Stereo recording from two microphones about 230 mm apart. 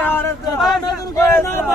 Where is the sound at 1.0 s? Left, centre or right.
Centre.